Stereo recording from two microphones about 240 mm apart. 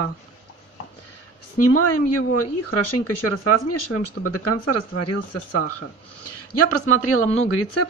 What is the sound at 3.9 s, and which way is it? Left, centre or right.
Speech, left.